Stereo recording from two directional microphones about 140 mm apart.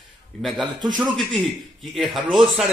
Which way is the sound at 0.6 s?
30° right (ahead or behind).